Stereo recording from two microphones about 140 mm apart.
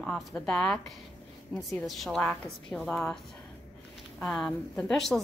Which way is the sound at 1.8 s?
Centre (ahead or behind).